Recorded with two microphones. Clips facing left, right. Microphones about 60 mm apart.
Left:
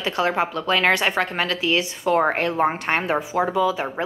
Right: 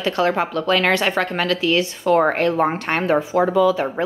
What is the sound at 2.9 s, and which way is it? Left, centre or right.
A woman's voice, centre.